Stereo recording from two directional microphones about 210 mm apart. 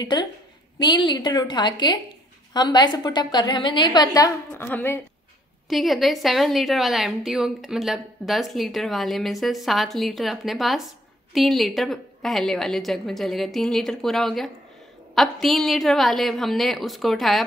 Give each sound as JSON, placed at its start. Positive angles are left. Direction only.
{"t": 0.0, "sound": "a woman's voice", "side_deg": 20}